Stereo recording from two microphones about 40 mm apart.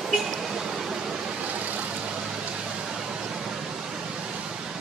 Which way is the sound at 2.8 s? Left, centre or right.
Centre.